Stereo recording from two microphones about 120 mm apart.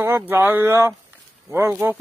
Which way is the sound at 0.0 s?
20° right (ahead or behind).